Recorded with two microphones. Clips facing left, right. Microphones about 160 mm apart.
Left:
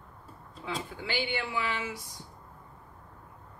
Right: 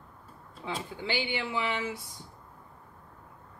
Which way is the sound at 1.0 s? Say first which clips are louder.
Right 1 dB; 20° right (ahead or behind).